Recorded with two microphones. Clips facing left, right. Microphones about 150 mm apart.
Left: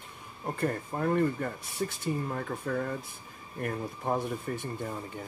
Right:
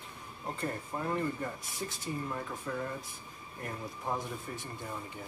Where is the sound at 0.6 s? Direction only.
65° left (ahead or behind).